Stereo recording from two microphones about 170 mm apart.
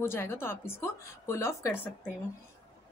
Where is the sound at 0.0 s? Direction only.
15° left (ahead or behind).